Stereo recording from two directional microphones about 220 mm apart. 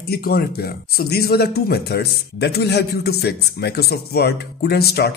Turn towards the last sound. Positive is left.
turn(degrees=45)  # may be behind; listen again after turning